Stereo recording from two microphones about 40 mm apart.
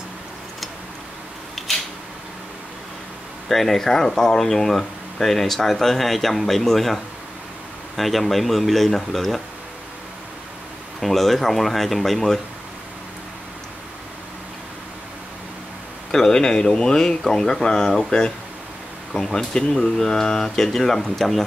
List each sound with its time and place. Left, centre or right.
3.4 s speech: centre
11.0 s speech: centre
16.1 s speech: centre